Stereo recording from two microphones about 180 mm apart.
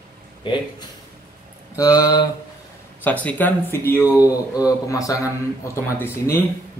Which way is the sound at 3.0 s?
10° left (ahead or behind).